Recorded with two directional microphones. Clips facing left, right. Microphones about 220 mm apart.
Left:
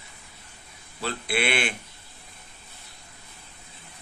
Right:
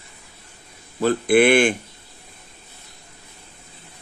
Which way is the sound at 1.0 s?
50° right (ahead or behind).